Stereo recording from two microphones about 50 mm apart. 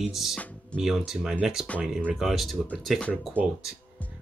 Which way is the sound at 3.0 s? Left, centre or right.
Left.